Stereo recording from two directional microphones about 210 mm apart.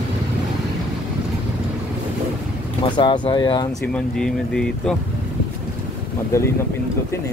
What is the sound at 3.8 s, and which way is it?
Speech, 5° left (ahead or behind).